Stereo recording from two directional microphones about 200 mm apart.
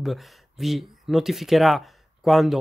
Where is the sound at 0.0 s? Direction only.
Centre (ahead or behind).